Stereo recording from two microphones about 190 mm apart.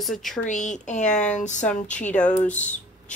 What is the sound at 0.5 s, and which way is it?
A woman's voice, 40° left (ahead or behind).